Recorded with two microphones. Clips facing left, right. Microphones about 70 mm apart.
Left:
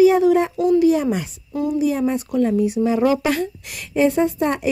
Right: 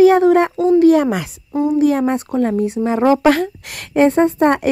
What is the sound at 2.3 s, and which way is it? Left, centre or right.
Speech, right.